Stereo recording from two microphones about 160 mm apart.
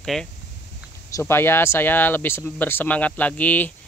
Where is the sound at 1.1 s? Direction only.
15° left (ahead or behind).